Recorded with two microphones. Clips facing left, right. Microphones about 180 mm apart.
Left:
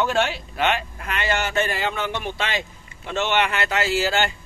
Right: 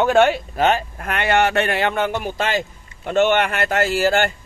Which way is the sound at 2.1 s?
40° right (ahead or behind).